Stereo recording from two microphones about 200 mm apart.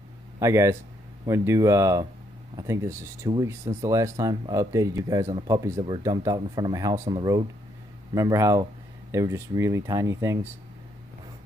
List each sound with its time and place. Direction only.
0.4 s speech: 15° right (ahead or behind)